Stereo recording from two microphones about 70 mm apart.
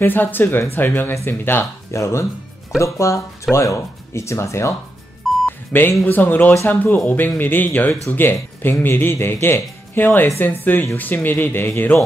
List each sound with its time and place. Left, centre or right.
0.0 s speech: left
1.9 s speech: left
5.2 s telephone dialing: centre
5.7 s speech: left